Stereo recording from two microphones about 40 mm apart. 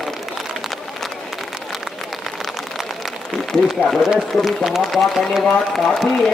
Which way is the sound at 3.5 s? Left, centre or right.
Centre.